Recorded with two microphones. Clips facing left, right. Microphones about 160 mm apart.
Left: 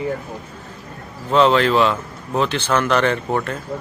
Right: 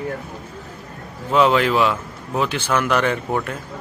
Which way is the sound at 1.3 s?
10° right (ahead or behind).